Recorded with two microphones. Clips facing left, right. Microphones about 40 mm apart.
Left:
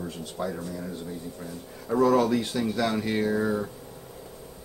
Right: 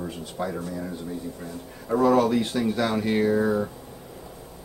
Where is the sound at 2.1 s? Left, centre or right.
Centre.